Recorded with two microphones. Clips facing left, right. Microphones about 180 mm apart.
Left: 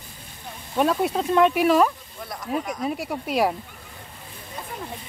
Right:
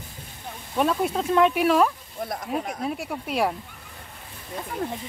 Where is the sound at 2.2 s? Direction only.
50° right (ahead or behind).